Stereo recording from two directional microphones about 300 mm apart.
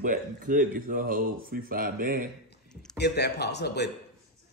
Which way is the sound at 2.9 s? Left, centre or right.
Left.